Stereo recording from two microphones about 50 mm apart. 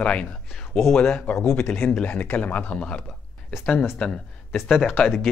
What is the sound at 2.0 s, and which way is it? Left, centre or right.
Speech, left.